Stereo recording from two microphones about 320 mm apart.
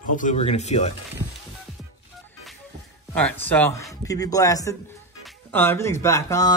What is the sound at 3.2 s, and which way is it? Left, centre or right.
Speech, centre.